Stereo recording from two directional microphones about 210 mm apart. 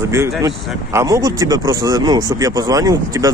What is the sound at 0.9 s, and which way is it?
Speech, 15° right (ahead or behind).